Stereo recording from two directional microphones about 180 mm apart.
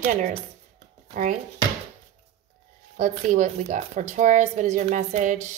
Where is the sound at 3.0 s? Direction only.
45° right (ahead or behind).